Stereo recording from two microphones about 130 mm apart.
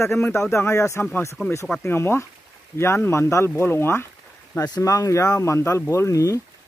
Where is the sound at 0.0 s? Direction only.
20° left (ahead or behind).